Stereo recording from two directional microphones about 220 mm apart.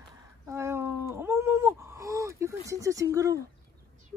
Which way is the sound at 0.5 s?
10° right (ahead or behind).